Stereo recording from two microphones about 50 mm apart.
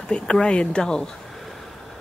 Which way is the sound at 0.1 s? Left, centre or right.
Centre.